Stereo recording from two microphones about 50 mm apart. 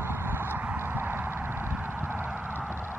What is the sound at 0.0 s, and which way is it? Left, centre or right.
Clip-clop, right.